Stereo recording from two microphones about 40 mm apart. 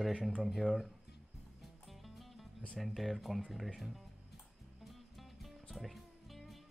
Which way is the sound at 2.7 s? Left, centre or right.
Centre.